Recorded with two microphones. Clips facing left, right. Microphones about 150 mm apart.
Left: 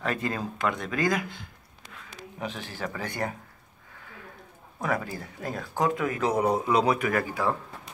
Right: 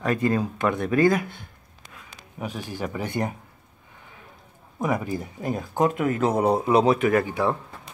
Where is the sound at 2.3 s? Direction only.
10° right (ahead or behind).